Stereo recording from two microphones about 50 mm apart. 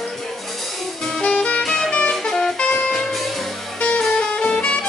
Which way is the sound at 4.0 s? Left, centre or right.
Centre.